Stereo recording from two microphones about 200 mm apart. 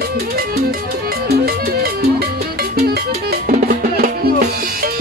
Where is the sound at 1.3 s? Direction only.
50° right (ahead or behind).